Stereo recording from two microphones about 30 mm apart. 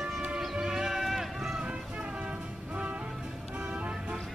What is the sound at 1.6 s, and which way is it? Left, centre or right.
Music, right.